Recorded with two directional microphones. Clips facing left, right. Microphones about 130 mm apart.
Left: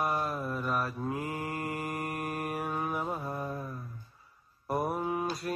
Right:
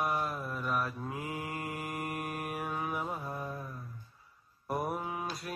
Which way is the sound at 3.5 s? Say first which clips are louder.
Left 4 dB; 15° left (ahead or behind).